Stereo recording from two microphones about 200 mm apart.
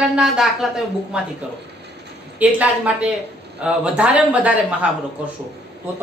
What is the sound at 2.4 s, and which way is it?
Speech, 10° right (ahead or behind).